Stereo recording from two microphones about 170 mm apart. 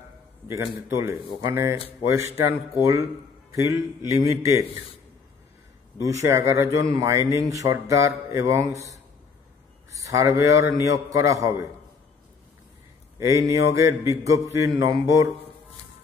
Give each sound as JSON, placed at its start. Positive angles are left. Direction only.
{"t": 0.5, "sound": "mantra", "side_deg": -15}
{"t": 4.1, "sound": "a man's voice", "side_deg": -20}
{"t": 5.9, "sound": "mantra", "side_deg": -20}
{"t": 7.4, "sound": "a man's voice", "side_deg": -20}
{"t": 7.9, "sound": "mantra", "side_deg": -15}
{"t": 9.8, "sound": "a man's voice", "side_deg": -20}
{"t": 13.2, "sound": "mantra", "side_deg": -20}
{"t": 14.8, "sound": "a man's voice", "side_deg": -20}